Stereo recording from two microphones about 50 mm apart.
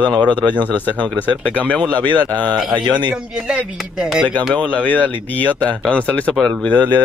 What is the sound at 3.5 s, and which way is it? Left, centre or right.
Speech, centre.